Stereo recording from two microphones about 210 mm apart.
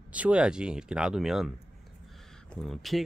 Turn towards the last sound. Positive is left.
turn(degrees=0)  # may be behind; listen again after turning